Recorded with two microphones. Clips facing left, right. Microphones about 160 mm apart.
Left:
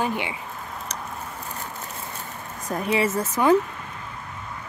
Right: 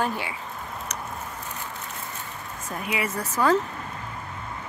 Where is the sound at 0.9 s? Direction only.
30° left (ahead or behind).